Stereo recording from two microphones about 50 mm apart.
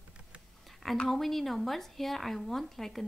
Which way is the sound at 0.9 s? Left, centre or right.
Centre.